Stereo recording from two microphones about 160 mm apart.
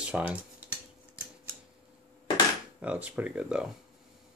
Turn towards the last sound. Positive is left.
turn(degrees=-5)  # may be behind; listen again after turning